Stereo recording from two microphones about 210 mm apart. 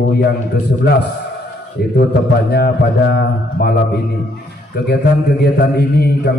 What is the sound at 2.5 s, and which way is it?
A man's voice, 55° left (ahead or behind).